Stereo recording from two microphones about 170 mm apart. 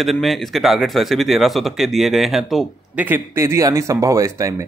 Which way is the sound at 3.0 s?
15° right (ahead or behind).